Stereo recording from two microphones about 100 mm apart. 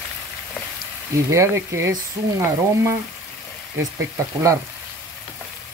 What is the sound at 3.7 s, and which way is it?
Stir, 30° right (ahead or behind).